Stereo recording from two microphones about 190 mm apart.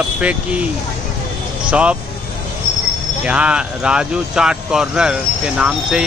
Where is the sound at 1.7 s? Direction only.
5° right (ahead or behind).